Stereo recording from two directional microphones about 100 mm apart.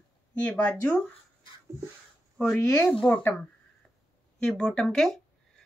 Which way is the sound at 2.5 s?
30° left (ahead or behind).